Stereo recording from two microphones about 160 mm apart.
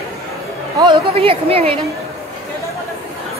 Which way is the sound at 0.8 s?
35° right (ahead or behind).